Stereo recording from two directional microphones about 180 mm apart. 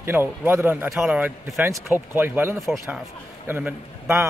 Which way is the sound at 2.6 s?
Centre (ahead or behind).